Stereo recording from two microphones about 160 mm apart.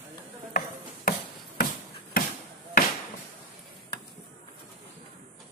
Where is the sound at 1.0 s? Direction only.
65° left (ahead or behind).